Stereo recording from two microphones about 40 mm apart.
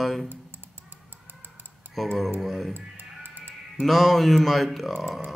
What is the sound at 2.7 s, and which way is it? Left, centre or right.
Music, right.